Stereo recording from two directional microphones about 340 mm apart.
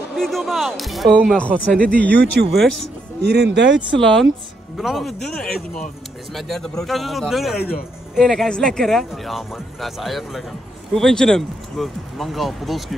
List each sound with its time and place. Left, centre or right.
0.1 s speech: centre
3.2 s speech: right
4.0 s speech: centre